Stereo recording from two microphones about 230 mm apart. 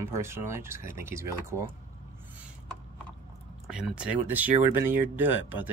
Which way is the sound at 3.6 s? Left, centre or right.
Centre.